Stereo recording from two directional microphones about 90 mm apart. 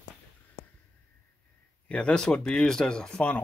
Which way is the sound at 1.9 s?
10° left (ahead or behind).